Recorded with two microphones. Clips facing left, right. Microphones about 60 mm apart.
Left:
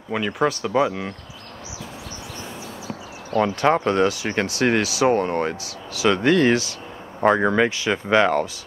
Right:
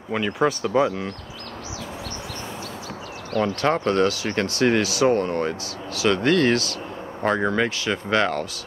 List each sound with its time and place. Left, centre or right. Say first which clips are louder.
0.1 s speech: even; centre
0.7 s speech: left 1 dB; centre
3.3 s speech: left 3 dB; centre